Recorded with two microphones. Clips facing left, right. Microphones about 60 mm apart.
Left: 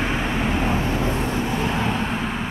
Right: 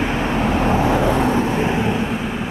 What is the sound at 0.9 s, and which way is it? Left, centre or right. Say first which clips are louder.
Vehicle: right 7 dB; right.